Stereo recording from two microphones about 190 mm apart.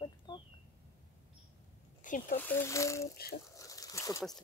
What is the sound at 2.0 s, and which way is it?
Speech, 45° left (ahead or behind).